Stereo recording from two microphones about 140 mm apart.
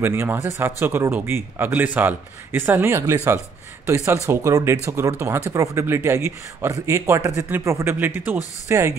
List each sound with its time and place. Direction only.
0.0 s a man's voice: 15° right (ahead or behind)